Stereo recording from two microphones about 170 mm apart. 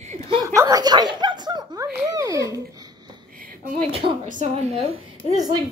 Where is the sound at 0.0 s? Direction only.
45° right (ahead or behind).